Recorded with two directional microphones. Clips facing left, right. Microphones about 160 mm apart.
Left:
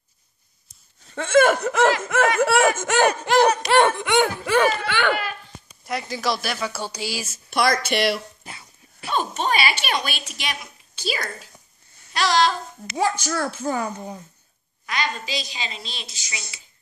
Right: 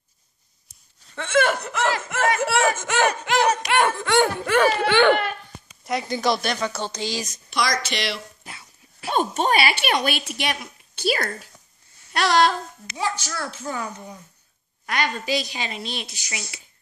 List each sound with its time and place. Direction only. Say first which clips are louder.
1.0 s speech: left 4 dB; 45° left (ahead or behind)
3.9 s laughter: even; 20° left (ahead or behind)
4.6 s speech: right 5 dB; 25° right (ahead or behind)
5.9 s speech: right 3 dB; centre (ahead or behind)
7.4 s speech: left 4 dB; 55° left (ahead or behind)
8.5 s dog: left 1 dB; centre (ahead or behind)
9.1 s speech: right 2 dB; 50° right (ahead or behind)
12.1 s babbling: right 1 dB; 60° right (ahead or behind)
12.9 s speech: left 5 dB; 50° left (ahead or behind)
14.9 s speech: right 3 dB; 55° right (ahead or behind)